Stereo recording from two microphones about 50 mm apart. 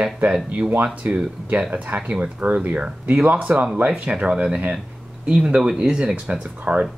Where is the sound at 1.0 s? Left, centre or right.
Right.